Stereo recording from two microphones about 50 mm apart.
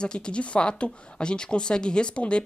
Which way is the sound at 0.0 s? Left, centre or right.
Centre.